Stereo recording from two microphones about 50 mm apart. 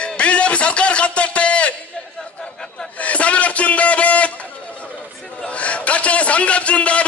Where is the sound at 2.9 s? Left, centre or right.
Left.